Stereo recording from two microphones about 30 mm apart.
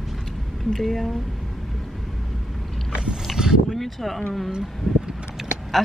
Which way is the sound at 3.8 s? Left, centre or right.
Centre.